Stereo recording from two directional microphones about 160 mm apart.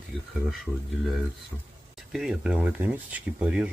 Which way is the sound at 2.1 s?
5° right (ahead or behind).